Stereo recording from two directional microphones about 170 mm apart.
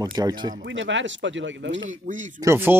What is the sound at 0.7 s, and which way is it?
Speech, 90° right.